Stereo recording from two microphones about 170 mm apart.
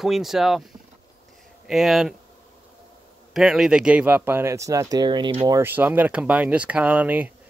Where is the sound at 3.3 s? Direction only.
Centre (ahead or behind); by 5.5 s 30° right (ahead or behind).